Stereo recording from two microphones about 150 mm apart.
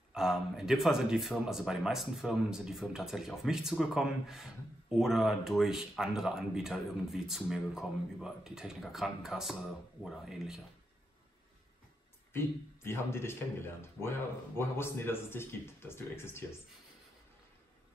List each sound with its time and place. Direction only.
0.1 s speech: 5° right (ahead or behind)
12.3 s a man's voice: 15° left (ahead or behind)